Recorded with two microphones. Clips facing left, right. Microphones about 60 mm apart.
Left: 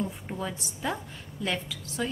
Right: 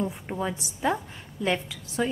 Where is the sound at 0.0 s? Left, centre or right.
Centre.